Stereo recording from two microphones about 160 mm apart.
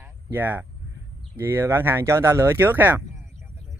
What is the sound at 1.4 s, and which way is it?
Speech, 15° right (ahead or behind).